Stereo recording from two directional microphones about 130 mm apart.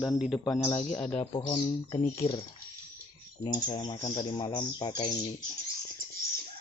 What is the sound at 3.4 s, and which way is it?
Speech, 30° left (ahead or behind).